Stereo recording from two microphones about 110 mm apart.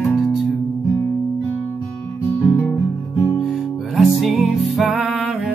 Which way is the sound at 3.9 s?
Centre (ahead or behind).